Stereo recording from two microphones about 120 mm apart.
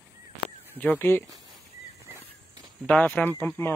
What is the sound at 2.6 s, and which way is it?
Speech, 10° left (ahead or behind).